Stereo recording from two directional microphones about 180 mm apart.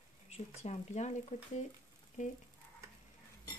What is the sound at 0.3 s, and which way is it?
Speech, 35° left (ahead or behind).